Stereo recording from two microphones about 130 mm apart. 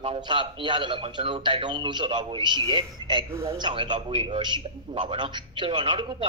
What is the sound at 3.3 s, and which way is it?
Speech, 20° right (ahead or behind).